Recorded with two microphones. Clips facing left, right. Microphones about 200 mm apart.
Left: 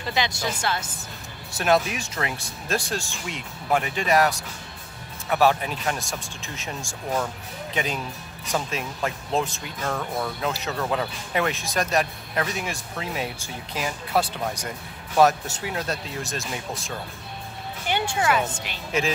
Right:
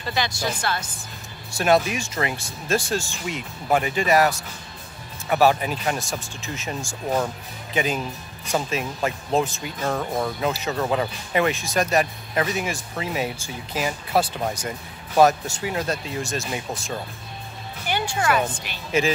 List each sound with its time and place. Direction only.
0.1 s speech: 20° left (ahead or behind)
1.5 s speech: centre (ahead or behind)
9.8 s speech: 15° right (ahead or behind)
10.4 s speech: centre (ahead or behind)
17.8 s speech: 20° left (ahead or behind)
18.9 s speech: centre (ahead or behind)